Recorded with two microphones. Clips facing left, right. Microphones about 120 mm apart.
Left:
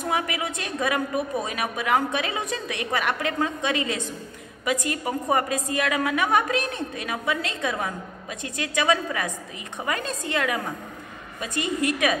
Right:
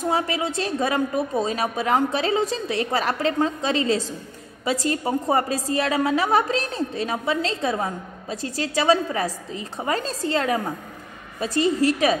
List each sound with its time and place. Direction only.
0.0 s a woman's voice: 30° right (ahead or behind)